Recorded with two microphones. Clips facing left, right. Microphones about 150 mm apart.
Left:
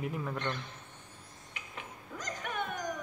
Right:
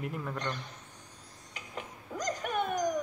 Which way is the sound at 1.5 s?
40° right (ahead or behind).